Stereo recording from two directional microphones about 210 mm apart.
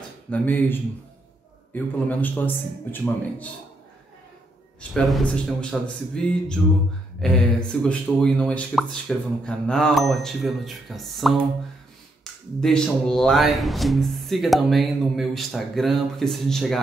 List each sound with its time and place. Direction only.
0.3 s a man's voice: 10° left (ahead or behind)
4.9 s speech: centre (ahead or behind)
12.5 s speech: 5° left (ahead or behind)